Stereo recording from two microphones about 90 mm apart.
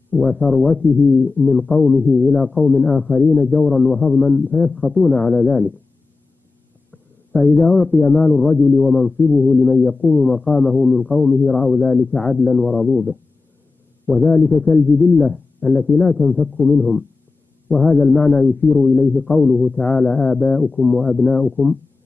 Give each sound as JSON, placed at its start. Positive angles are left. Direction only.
{"t": 0.2, "sound": "a man's voice", "side_deg": 10}
{"t": 6.9, "sound": "a man's voice", "side_deg": 5}
{"t": 14.0, "sound": "a man's voice", "side_deg": 10}